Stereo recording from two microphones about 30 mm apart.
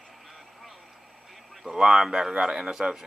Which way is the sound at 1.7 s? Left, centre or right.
Centre.